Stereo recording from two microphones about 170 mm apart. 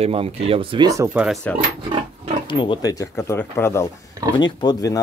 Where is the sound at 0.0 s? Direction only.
35° right (ahead or behind); by 1.1 s 20° right (ahead or behind).